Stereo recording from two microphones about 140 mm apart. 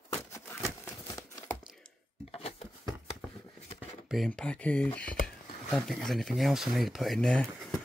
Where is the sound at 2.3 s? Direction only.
45° left (ahead or behind).